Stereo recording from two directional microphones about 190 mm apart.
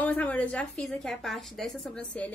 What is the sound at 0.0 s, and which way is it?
A woman's voice, 10° left (ahead or behind).